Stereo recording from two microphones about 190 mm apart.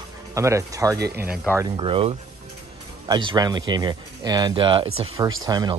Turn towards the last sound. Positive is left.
turn(degrees=-20)  # may be behind; listen again after turning